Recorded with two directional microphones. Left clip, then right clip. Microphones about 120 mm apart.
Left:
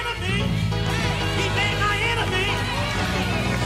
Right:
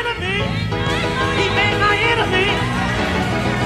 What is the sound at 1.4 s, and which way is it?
Music, 35° left (ahead or behind).